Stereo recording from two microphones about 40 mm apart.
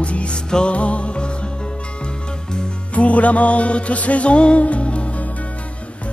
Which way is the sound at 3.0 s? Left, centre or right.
Left.